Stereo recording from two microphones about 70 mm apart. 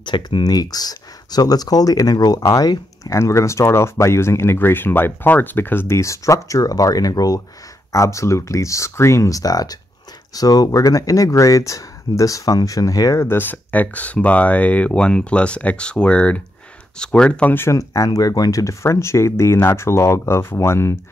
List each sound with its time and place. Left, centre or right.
0.0 s speech: left
3.0 s speech: left
5.9 s speech: left
7.9 s speech: left
13.2 s speech: left
17.6 s speech: left